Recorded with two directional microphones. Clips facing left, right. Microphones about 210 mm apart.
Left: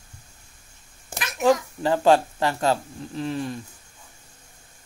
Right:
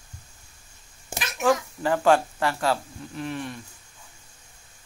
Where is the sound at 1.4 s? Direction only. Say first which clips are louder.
Left 3 dB; 25° left (ahead or behind).